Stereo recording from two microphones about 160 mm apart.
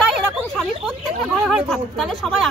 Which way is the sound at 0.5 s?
Centre (ahead or behind).